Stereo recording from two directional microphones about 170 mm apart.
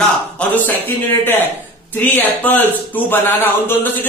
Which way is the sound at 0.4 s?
10° left (ahead or behind).